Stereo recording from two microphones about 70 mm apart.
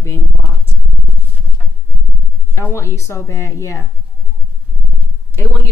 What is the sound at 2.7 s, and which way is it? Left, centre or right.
A woman's voice, left.